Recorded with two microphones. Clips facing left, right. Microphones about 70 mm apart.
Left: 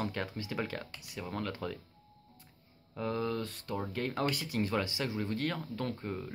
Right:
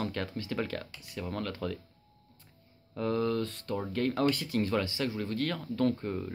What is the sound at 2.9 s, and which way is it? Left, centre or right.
Speech, centre.